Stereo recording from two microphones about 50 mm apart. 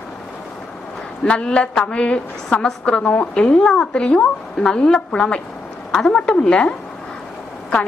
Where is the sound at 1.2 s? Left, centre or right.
Left.